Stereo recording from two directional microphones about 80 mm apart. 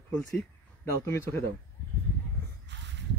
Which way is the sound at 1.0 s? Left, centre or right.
Left.